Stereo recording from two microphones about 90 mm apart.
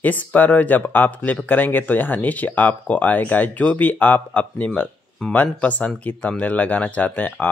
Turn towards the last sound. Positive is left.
turn(degrees=20)  # may be behind; listen again after turning